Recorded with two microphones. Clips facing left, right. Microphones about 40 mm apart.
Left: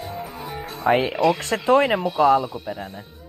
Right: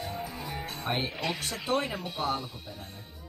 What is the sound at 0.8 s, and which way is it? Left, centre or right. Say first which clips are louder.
Speech: left 14 dB; left.